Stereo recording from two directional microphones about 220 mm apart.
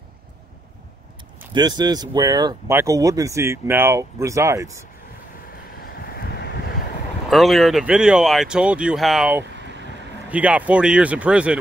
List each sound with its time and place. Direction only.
1.5 s speech: 20° right (ahead or behind)
5.9 s vehicle: 45° left (ahead or behind)
7.2 s speech: centre (ahead or behind)